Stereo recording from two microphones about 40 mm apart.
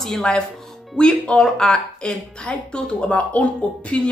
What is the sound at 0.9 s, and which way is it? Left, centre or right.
A woman's voice, left.